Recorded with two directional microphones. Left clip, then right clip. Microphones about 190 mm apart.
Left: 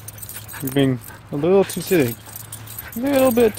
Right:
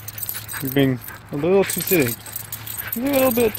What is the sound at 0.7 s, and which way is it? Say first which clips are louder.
Speech: even; 10° left (ahead or behind).